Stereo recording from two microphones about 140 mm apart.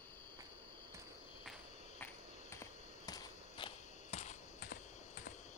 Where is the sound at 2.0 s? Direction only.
20° left (ahead or behind).